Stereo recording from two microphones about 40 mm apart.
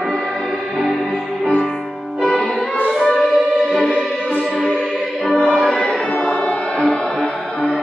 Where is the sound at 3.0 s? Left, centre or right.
Centre.